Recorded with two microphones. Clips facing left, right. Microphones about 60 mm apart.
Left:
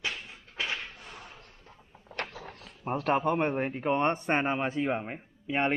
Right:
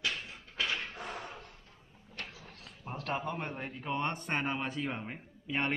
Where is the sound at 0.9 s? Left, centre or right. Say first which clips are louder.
Right 5 dB; right.